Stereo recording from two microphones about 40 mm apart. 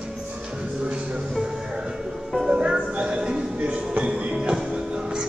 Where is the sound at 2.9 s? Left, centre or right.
Right.